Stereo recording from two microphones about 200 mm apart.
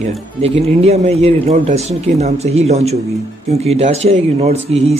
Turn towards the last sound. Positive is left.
turn(degrees=-30)  # may be behind; listen again after turning